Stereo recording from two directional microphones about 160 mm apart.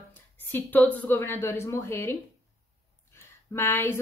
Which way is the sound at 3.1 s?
15° left (ahead or behind).